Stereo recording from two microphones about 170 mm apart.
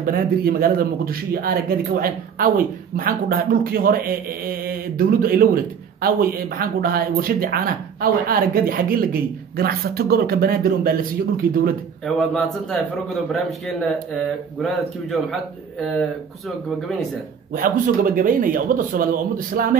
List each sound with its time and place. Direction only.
0.0 s speech: 60° right (ahead or behind)
12.4 s a man's voice: centre (ahead or behind)
17.5 s speech: 55° right (ahead or behind)